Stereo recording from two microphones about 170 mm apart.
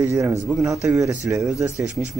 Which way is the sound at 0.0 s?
15° right (ahead or behind).